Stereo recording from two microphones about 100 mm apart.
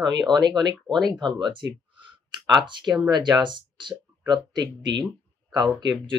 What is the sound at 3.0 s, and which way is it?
Speech, 45° right (ahead or behind).